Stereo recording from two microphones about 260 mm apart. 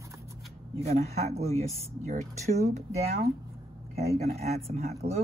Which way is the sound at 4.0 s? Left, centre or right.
Right.